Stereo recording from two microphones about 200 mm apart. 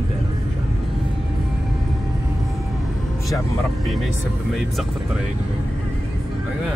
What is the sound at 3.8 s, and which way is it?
Vehicle, centre (ahead or behind).